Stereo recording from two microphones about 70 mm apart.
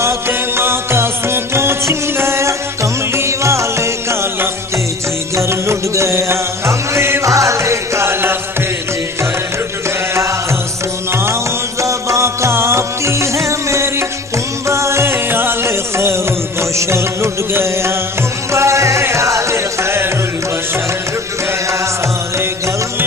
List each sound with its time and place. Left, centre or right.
0.0 s music: right
11.8 s music: right